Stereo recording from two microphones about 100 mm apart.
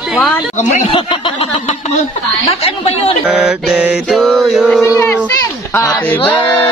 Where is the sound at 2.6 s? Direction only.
80° left.